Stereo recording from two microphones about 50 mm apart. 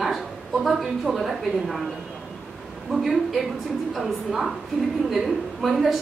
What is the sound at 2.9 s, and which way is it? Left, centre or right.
Speech, centre.